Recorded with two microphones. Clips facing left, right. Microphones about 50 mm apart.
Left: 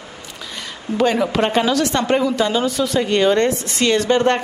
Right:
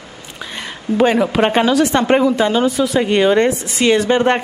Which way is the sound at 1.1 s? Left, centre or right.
Centre.